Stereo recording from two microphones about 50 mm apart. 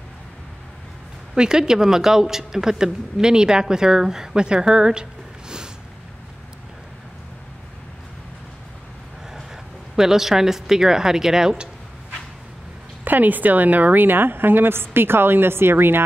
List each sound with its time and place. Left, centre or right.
1.3 s speech: centre
9.9 s speech: centre
13.0 s speech: right